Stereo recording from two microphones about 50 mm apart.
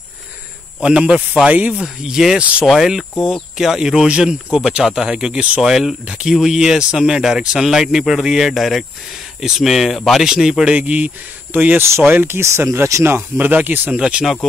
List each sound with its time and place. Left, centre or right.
0.7 s speech: centre
1.5 s speech: right
1.8 s speech: centre
10.7 s speech: right
11.5 s speech: right
12.4 s speech: right
13.0 s speech: right
13.9 s speech: right